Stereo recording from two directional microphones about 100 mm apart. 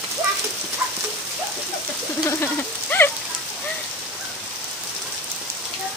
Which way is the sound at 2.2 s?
20° left (ahead or behind).